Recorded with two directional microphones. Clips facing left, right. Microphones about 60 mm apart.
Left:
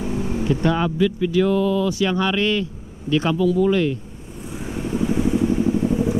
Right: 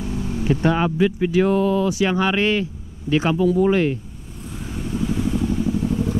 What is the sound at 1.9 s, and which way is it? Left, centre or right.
Speech, centre.